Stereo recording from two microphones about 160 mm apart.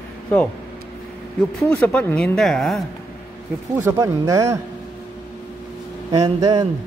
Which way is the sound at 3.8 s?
15° right (ahead or behind).